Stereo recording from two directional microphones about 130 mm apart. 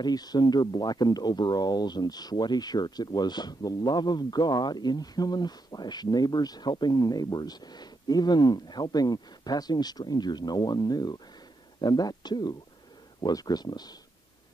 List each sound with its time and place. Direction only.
0.0 s speech: 30° left (ahead or behind)